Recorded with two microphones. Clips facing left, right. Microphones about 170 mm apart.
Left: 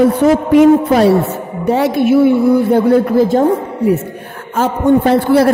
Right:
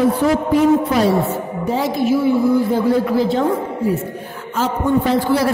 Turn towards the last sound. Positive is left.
turn(degrees=55)  # may be behind; listen again after turning